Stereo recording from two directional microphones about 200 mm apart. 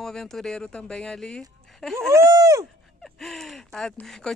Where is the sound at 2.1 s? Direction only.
15° right (ahead or behind).